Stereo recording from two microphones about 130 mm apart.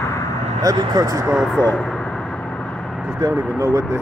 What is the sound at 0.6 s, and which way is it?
Speech, 30° right (ahead or behind).